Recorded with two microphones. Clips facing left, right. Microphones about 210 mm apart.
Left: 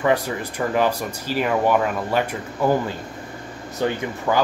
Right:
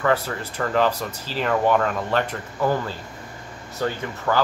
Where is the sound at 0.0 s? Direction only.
15° left (ahead or behind).